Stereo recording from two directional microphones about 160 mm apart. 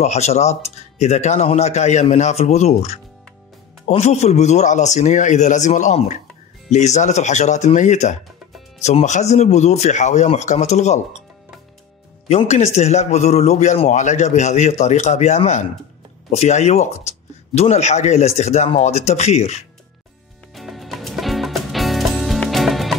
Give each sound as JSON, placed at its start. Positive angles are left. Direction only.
{"t": 0.0, "sound": "speech", "side_deg": 45}
{"t": 12.3, "sound": "speech", "side_deg": 40}
{"t": 20.5, "sound": "music", "side_deg": 0}